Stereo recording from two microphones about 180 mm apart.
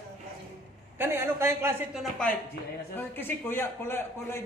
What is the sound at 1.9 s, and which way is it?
A man's voice, 5° left (ahead or behind).